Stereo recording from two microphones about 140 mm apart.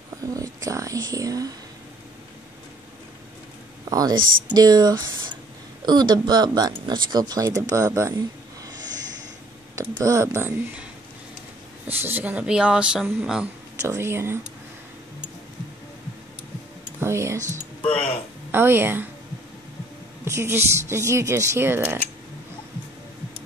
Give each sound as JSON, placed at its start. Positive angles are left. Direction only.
{"t": 0.3, "sound": "speech", "side_deg": -25}
{"t": 3.9, "sound": "speech", "side_deg": -25}
{"t": 4.2, "sound": "speech", "side_deg": -90}
{"t": 4.6, "sound": "speech", "side_deg": -25}
{"t": 9.8, "sound": "speech", "side_deg": -20}
{"t": 11.9, "sound": "speech", "side_deg": -15}
{"t": 13.8, "sound": "speech", "side_deg": -20}
{"t": 17.0, "sound": "speech", "side_deg": -20}
{"t": 17.9, "sound": "speech", "side_deg": 10}
{"t": 18.5, "sound": "speech", "side_deg": -15}
{"t": 20.2, "sound": "speech", "side_deg": -20}